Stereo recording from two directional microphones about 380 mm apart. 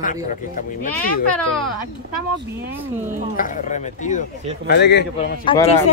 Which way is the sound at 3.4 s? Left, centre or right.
Centre.